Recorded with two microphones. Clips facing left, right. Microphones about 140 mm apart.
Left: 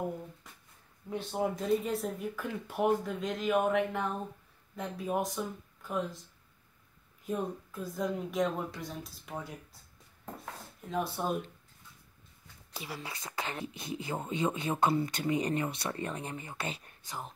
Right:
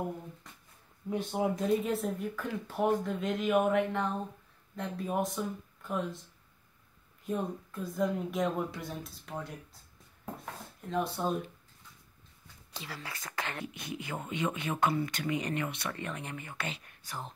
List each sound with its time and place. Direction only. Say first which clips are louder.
1.1 s speech: right 2 dB; 5° right (ahead or behind)
7.2 s speech: even; centre (ahead or behind)
10.9 s speech: right 1 dB; 5° left (ahead or behind)
12.7 s speech: left 2 dB; 15° left (ahead or behind); by 16.9 s 35° left (ahead or behind)